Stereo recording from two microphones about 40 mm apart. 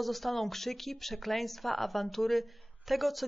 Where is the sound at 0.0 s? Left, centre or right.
Centre.